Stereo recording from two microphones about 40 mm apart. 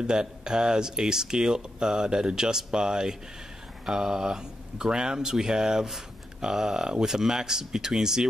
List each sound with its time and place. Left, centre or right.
0.0 s speech: centre